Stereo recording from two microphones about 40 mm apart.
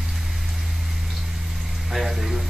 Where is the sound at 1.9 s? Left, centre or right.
Centre.